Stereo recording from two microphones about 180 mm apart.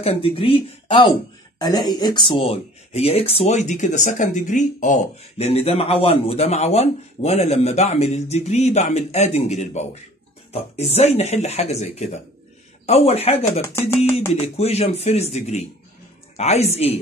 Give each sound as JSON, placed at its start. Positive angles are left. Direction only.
{"t": 0.0, "sound": "a man's voice", "side_deg": 30}
{"t": 5.5, "sound": "a man's voice", "side_deg": 35}
{"t": 13.6, "sound": "music", "side_deg": 15}
{"t": 14.3, "sound": "a man's voice", "side_deg": 35}